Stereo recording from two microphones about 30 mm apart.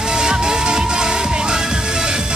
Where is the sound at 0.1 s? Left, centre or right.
Right.